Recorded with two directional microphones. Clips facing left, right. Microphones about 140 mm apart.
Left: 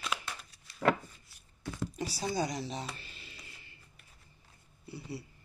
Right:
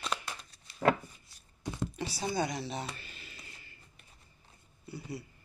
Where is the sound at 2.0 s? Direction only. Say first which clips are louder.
Even; 40° left (ahead or behind).